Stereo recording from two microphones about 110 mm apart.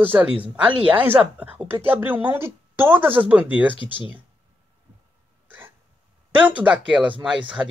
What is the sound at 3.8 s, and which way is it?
Speech, 50° left (ahead or behind).